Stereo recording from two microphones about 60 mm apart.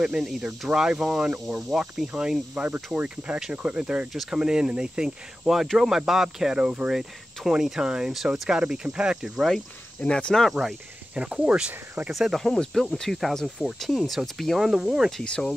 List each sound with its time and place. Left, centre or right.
0.0 s speech: centre
10.0 s speech: centre
10.5 s speech: centre
12.1 s speech: centre
15.2 s speech: centre